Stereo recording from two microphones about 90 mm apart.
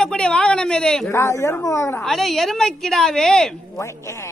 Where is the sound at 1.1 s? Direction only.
30° left (ahead or behind).